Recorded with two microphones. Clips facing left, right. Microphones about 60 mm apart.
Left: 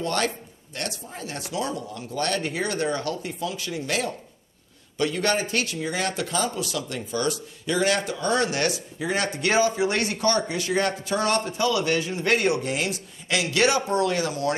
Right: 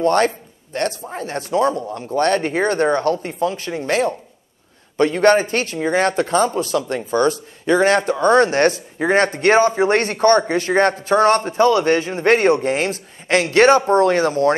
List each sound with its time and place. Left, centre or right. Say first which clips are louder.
0.0 s speech: right 10 dB; right